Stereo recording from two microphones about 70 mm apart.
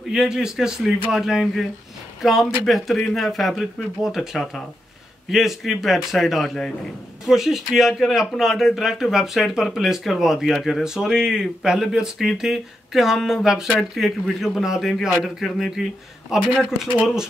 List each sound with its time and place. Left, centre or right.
0.1 s speech: centre
16.3 s speech: centre